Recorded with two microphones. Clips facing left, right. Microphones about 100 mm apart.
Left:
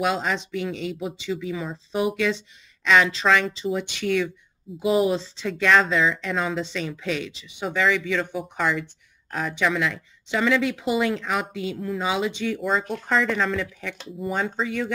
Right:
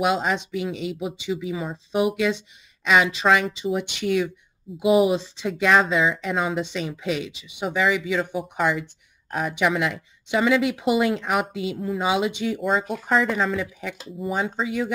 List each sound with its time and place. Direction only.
0.0 s speech: 15° right (ahead or behind)
4.7 s speech: centre (ahead or behind)
5.1 s speech: 15° right (ahead or behind)
12.6 s speech: 5° right (ahead or behind)